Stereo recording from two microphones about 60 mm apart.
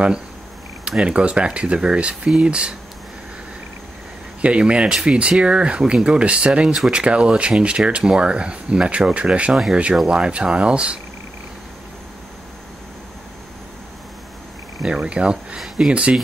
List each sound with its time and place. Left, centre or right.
0.8 s speech: centre
4.4 s speech: centre
14.8 s speech: centre